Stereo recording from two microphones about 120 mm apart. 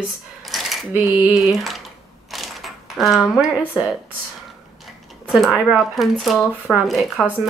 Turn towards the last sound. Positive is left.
turn(degrees=0)  # may be behind; listen again after turning